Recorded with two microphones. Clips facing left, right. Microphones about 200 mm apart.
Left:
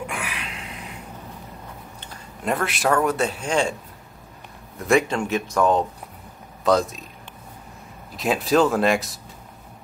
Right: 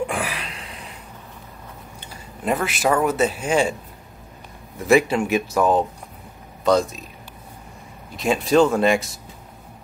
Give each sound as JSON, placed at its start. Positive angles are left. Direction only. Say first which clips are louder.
{"t": 0.0, "sound": "a sound", "louder": "right 6 dB", "side_deg": -35}
{"t": 2.4, "sound": "a man's voice", "louder": "right 2 dB", "side_deg": 0}
{"t": 4.7, "sound": "a man's voice", "louder": "right 3 dB", "side_deg": -5}
{"t": 8.1, "sound": "a man's voice", "louder": "right 2 dB", "side_deg": 0}